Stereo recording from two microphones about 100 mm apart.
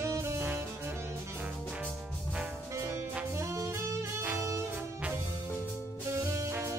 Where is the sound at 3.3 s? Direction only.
30° right (ahead or behind).